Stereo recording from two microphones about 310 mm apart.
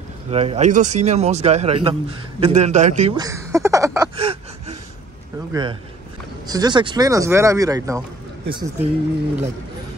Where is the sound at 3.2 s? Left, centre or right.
Centre.